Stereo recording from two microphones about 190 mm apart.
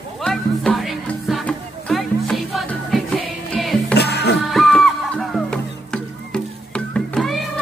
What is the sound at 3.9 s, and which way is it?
Music, 60° left (ahead or behind).